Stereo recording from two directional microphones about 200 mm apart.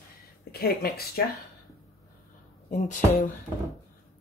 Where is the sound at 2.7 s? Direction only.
40° left (ahead or behind).